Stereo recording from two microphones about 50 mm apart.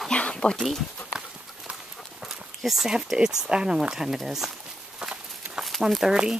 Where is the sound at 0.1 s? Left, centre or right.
Left.